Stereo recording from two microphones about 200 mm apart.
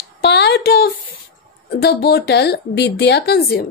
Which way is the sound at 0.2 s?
55° left (ahead or behind).